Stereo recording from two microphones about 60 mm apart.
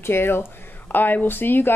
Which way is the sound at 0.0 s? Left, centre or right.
Left.